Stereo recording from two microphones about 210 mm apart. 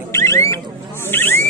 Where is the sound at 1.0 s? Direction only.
10° left (ahead or behind).